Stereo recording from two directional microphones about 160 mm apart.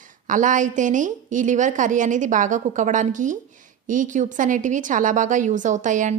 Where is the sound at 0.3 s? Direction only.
55° right (ahead or behind).